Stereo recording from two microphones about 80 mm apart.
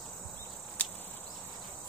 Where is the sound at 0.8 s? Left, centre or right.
Centre.